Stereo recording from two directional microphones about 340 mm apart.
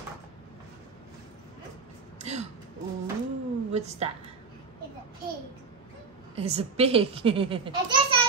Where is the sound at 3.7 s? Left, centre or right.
Centre.